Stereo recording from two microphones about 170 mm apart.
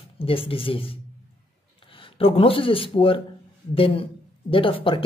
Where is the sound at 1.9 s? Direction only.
30° left (ahead or behind).